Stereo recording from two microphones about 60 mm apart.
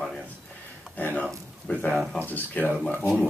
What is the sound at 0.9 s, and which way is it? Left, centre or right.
Speech, left.